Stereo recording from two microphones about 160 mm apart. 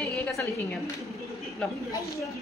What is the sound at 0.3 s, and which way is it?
Speech, 20° left (ahead or behind).